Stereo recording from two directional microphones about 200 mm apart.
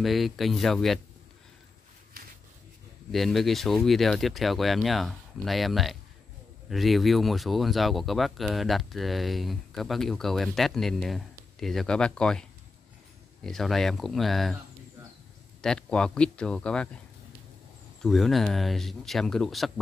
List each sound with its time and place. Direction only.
0.0 s speech: centre (ahead or behind)
2.1 s a sound: 45° right (ahead or behind)
3.1 s speech: centre (ahead or behind)
15.6 s speech: 5° left (ahead or behind)
18.0 s speech: centre (ahead or behind)